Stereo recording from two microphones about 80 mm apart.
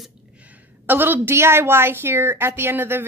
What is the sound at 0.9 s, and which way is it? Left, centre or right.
A woman's voice, right.